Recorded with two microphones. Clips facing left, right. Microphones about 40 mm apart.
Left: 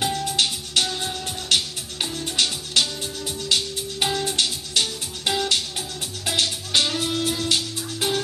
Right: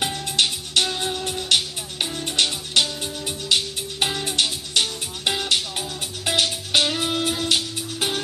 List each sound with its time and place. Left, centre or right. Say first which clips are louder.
0.4 s music: right 4 dB; centre